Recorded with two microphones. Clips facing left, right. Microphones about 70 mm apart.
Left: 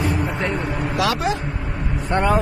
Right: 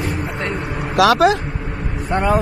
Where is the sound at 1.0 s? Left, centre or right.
Right.